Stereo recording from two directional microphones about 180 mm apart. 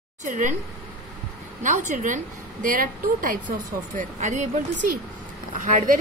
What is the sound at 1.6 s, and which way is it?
Speech, 45° right (ahead or behind).